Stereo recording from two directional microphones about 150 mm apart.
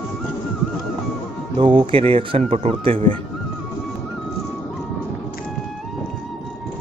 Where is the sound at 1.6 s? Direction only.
35° right (ahead or behind).